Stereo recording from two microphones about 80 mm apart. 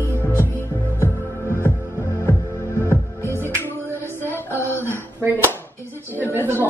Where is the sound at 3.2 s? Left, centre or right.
Left.